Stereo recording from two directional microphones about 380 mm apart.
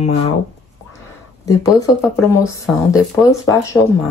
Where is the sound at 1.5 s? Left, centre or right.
Centre.